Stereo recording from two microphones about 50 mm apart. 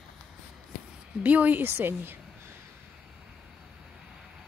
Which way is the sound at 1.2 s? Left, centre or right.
Right.